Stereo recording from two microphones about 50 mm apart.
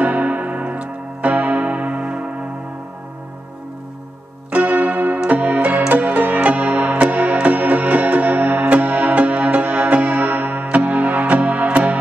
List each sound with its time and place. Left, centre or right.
0.0 s music: right
4.5 s church bell: right
5.3 s music: right